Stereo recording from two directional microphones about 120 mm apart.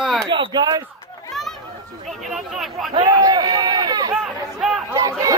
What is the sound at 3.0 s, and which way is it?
Run, 35° right (ahead or behind).